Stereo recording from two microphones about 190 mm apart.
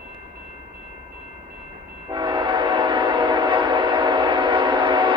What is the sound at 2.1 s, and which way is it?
Train, 25° right (ahead or behind).